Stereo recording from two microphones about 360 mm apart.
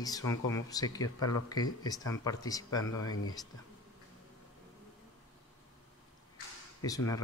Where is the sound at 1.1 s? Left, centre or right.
Left.